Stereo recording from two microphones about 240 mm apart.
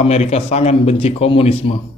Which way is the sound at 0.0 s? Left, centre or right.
Left.